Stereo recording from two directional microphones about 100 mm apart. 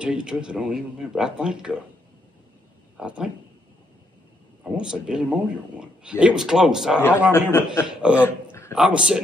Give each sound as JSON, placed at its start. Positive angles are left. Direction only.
{"t": 0.0, "sound": "speech", "side_deg": -10}
{"t": 3.0, "sound": "speech", "side_deg": -10}
{"t": 4.6, "sound": "speech", "side_deg": -10}
{"t": 7.3, "sound": "a man's voice", "side_deg": 25}
{"t": 7.8, "sound": "speech", "side_deg": -10}
{"t": 8.2, "sound": "a sound", "side_deg": 25}
{"t": 8.7, "sound": "speech", "side_deg": -5}